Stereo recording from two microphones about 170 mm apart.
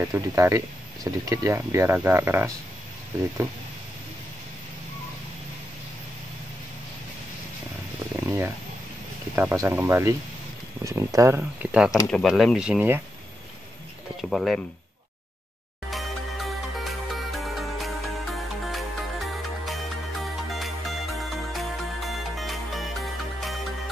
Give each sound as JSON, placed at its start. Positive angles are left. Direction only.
{"t": 0.0, "sound": "speech", "side_deg": -15}
{"t": 9.3, "sound": "speech", "side_deg": -15}
{"t": 14.3, "sound": "speech", "side_deg": 0}
{"t": 15.9, "sound": "music", "side_deg": 0}